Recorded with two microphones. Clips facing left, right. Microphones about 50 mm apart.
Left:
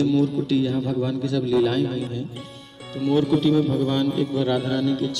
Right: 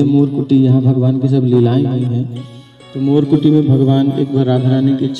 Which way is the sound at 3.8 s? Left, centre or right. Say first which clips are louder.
Right 10 dB; right.